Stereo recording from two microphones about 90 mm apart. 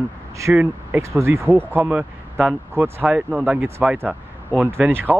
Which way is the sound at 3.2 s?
10° right (ahead or behind).